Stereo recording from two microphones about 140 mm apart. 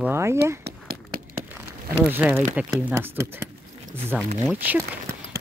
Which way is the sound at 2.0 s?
10° right (ahead or behind).